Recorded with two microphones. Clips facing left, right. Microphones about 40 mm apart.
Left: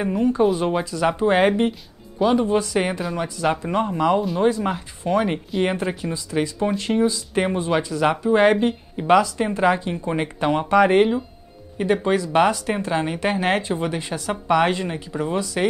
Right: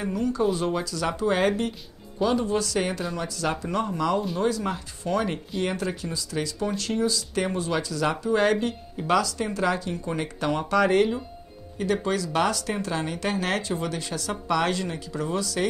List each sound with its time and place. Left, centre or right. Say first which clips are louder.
0.0 s speech: left 6 dB; left
1.7 s music: left 6 dB; centre
2.3 s speech: left 5 dB; left